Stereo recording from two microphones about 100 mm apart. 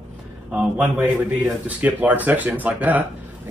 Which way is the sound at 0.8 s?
25° right (ahead or behind).